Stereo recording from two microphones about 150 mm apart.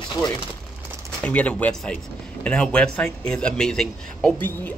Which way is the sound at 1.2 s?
10° left (ahead or behind).